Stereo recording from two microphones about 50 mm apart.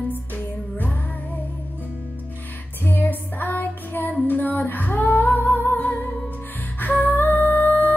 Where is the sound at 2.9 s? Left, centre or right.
Left.